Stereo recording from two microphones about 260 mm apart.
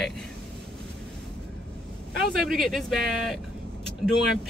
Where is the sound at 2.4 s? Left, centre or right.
Centre.